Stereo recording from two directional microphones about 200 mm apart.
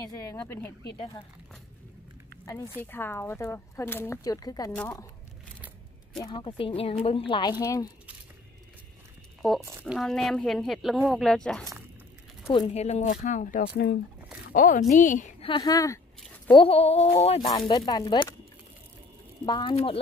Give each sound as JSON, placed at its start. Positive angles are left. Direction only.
{"t": 0.1, "sound": "speech", "side_deg": 15}
{"t": 2.4, "sound": "a woman's voice", "side_deg": 15}
{"t": 6.2, "sound": "a woman's voice", "side_deg": 25}
{"t": 9.4, "sound": "speech", "side_deg": 0}
{"t": 12.6, "sound": "speech", "side_deg": 30}
{"t": 15.4, "sound": "speech", "side_deg": 20}
{"t": 16.5, "sound": "speech", "side_deg": 30}
{"t": 17.5, "sound": "a woman's voice", "side_deg": 20}
{"t": 19.4, "sound": "a woman's voice", "side_deg": 20}